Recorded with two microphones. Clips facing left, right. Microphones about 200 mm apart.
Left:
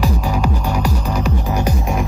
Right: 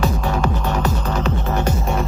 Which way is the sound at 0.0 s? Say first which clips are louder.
Left 1 dB; 10° left (ahead or behind).